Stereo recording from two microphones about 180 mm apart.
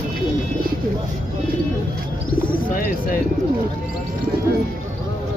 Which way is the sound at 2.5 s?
50° left (ahead or behind).